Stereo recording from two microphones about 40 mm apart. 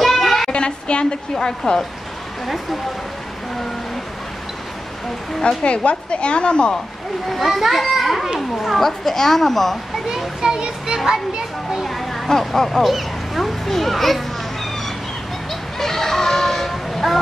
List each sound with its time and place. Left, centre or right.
0.0 s a sound: centre
0.5 s a woman's voice: left
2.4 s a child's voice: centre
5.5 s speech: left
7.2 s a child's voice: centre
10.0 s a child's voice: centre
11.8 s a child's voice: centre
15.8 s a sound: centre